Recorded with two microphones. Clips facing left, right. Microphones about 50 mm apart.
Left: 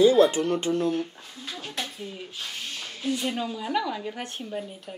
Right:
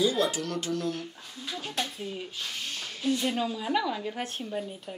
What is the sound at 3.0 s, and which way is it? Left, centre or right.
Speech, centre.